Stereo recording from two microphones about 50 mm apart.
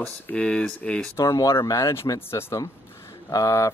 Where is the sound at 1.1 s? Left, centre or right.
Left.